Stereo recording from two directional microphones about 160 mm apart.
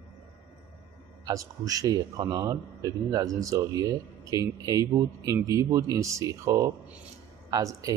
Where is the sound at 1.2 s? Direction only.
20° right (ahead or behind).